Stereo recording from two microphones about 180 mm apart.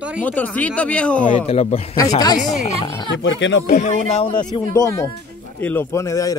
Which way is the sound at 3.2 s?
90° left.